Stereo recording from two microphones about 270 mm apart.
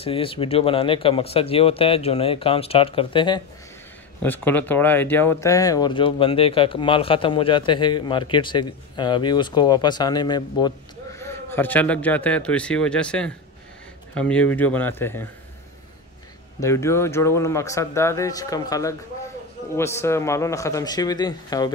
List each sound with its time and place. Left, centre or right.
0.0 s speech: centre
4.2 s a man's voice: centre
16.5 s speech: centre